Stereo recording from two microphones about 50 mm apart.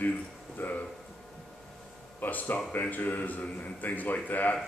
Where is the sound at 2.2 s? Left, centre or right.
Left.